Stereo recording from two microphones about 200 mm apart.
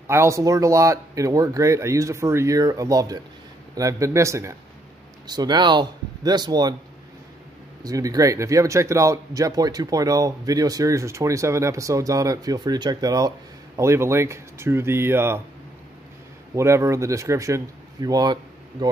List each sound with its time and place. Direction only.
0.0 s speech: 15° right (ahead or behind)
7.8 s speech: 15° right (ahead or behind)
16.5 s speech: 15° right (ahead or behind)